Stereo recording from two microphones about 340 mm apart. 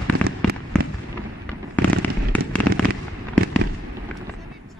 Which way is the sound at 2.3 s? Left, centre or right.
Centre.